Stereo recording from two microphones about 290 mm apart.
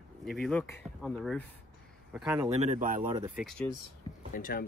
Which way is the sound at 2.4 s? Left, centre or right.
Right.